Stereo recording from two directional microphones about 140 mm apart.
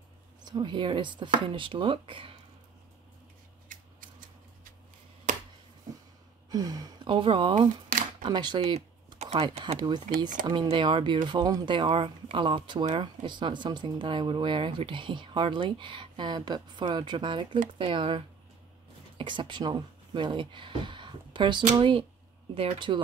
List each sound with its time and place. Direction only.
0.5 s speech: 35° right (ahead or behind)
3.7 s scissors: 75° right (ahead or behind)
5.3 s finger snapping: 65° right (ahead or behind)
6.5 s speech: 25° right (ahead or behind)
9.2 s speech: 50° right (ahead or behind)
9.8 s speech: 30° right (ahead or behind)